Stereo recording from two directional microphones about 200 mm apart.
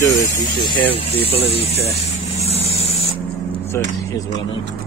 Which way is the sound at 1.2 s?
30° left (ahead or behind).